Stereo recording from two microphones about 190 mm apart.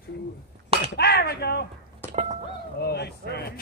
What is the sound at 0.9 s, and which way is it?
Speech, 60° left (ahead or behind).